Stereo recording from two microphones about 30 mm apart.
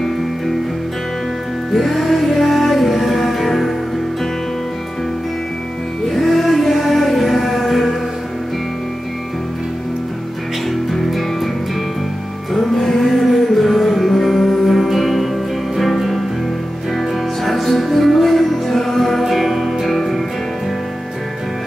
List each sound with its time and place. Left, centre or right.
1.7 s music: centre
6.0 s music: centre
12.5 s music: centre
17.4 s music: centre
19.2 s music: centre